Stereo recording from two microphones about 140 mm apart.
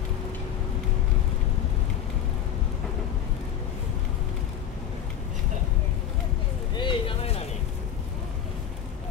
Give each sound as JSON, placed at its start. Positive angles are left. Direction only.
{"t": 6.7, "sound": "vehicle", "side_deg": 35}